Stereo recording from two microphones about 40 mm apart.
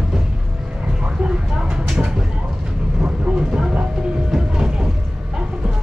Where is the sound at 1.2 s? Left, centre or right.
Centre.